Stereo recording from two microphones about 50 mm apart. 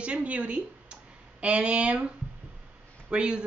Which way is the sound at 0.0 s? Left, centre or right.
Right.